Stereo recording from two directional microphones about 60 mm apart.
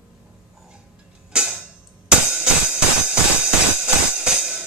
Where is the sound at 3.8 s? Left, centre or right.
Centre.